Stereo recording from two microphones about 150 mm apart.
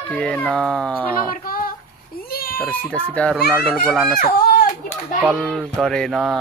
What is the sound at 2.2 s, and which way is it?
Cat, 90° left.